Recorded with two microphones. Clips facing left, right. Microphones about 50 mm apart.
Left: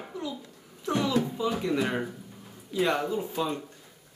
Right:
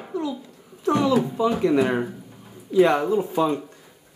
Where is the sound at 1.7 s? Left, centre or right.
Right.